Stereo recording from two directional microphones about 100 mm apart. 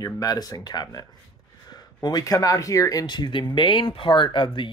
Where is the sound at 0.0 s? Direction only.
40° left (ahead or behind).